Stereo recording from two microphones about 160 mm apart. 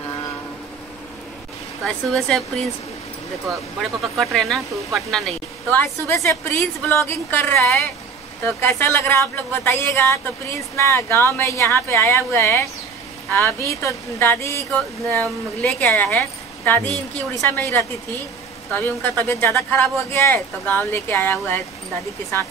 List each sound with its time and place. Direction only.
1.9 s speech: 5° left (ahead or behind)
3.8 s speech: centre (ahead or behind)
5.8 s speech: 15° left (ahead or behind)